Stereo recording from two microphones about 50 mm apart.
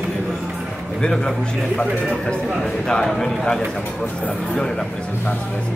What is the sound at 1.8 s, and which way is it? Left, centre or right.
A man's voice, centre.